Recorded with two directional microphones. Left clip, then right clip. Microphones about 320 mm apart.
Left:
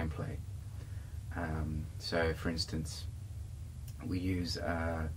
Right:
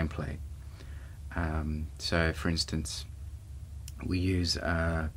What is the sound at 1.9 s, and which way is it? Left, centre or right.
Speech, right.